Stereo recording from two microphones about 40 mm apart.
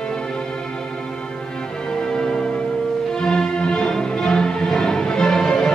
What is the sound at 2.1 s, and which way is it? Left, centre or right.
Music, centre.